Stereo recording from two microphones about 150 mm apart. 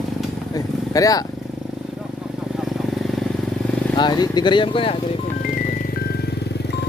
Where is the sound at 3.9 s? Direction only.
25° left (ahead or behind).